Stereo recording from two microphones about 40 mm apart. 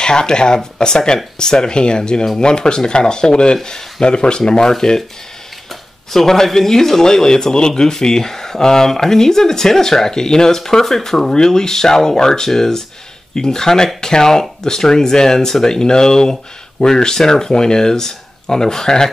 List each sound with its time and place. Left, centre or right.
0.0 s speech: centre